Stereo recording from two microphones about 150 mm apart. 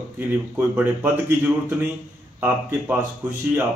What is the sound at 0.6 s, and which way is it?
Speech, 10° right (ahead or behind).